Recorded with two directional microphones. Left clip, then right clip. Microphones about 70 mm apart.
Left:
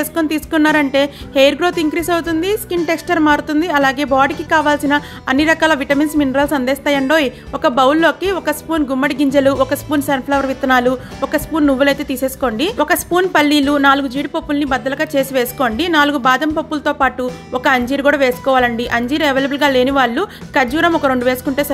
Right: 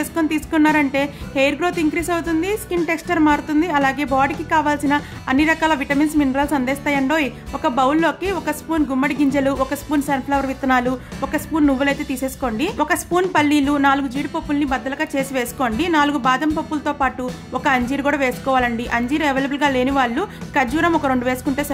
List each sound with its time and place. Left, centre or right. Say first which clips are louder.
0.0 s a woman's voice: left 3 dB; left